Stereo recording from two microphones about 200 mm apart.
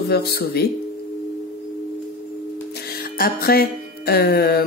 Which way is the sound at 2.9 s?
50° left (ahead or behind).